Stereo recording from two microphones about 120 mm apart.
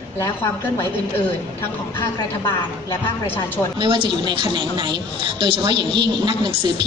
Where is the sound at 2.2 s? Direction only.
30° left (ahead or behind).